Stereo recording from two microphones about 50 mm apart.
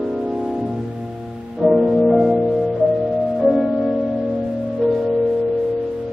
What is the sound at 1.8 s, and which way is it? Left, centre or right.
Music, centre.